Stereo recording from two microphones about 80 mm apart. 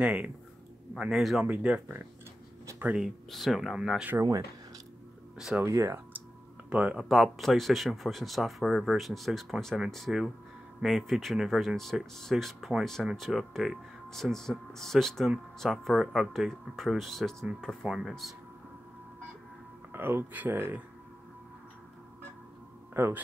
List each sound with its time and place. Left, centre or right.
0.0 s speech: centre
0.9 s speech: centre
1.4 s speech: centre
3.0 s speech: centre
4.2 s speech: right
5.7 s speech: right
6.7 s speech: centre
7.1 s speech: centre
19.9 s speech: right
23.0 s speech: right